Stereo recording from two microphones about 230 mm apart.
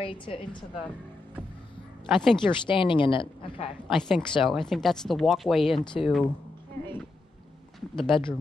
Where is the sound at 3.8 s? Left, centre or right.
Centre.